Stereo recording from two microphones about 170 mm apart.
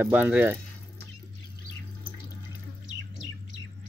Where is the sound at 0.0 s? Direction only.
10° right (ahead or behind).